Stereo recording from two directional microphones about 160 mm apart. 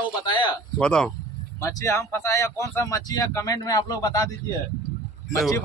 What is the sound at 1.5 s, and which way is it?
Speech, 20° left (ahead or behind).